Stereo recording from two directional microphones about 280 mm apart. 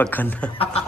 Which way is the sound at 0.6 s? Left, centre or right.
Left.